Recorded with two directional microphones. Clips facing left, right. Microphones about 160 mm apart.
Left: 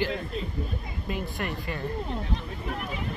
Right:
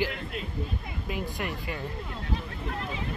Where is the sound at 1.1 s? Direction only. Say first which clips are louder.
Left 1 dB; 15° right (ahead or behind).